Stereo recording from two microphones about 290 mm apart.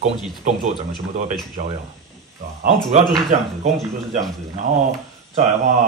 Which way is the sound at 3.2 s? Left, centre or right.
Right.